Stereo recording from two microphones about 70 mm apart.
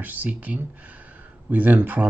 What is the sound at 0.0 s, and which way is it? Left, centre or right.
Speech, right.